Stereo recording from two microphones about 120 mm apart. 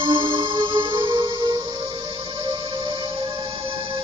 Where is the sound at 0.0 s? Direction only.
45° right (ahead or behind).